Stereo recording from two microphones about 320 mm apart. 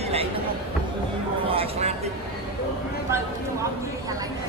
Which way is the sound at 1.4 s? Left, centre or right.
Centre.